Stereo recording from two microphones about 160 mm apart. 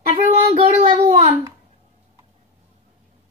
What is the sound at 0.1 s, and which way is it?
Child singing, 40° right (ahead or behind).